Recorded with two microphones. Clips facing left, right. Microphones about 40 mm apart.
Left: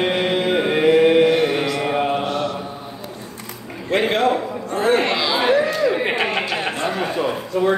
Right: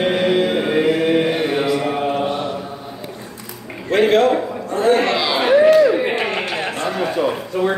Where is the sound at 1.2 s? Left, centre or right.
Centre.